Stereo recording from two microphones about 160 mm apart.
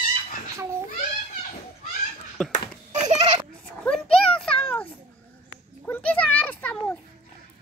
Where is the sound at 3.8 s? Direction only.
5° left (ahead or behind).